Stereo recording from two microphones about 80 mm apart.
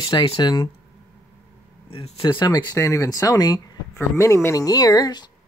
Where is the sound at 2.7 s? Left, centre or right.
Left.